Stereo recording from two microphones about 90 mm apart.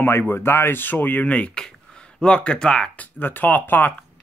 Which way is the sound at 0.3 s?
25° left (ahead or behind).